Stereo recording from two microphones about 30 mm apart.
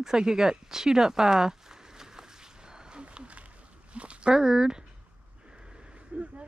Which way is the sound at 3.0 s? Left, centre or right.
Right.